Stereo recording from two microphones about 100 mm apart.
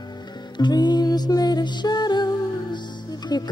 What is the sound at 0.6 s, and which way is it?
Music, 45° left (ahead or behind).